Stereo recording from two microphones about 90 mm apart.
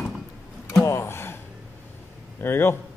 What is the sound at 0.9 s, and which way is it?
Gasp, 30° left (ahead or behind).